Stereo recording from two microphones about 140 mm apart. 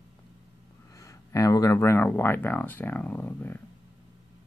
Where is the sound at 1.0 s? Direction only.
25° left (ahead or behind).